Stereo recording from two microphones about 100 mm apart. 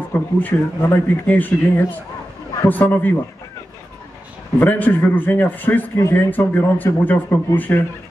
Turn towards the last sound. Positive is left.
turn(degrees=20)  # may be behind; listen again after turning